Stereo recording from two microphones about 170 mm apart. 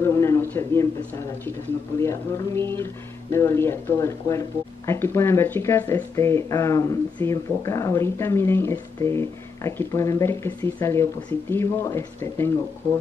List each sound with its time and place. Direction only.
0.0 s a man's voice: 15° left (ahead or behind)
2.0 s speech: 15° left (ahead or behind)